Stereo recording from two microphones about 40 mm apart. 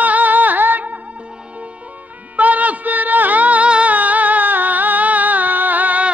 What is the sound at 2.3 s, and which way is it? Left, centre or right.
Music, right.